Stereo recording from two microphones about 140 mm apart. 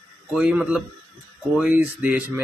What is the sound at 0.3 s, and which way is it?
Speech, 5° right (ahead or behind).